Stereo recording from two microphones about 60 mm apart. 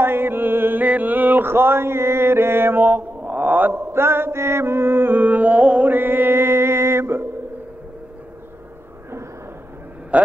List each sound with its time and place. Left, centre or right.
0.0 s mantra: right
3.9 s music: right
5.9 s mantra: right
10.1 s a man's voice: right